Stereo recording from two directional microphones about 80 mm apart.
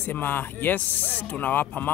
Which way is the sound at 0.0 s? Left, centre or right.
Left.